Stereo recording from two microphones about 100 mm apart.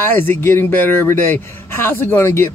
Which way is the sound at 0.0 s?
20° left (ahead or behind).